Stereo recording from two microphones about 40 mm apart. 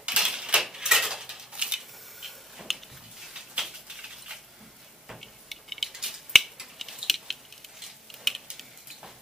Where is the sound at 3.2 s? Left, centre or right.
Centre.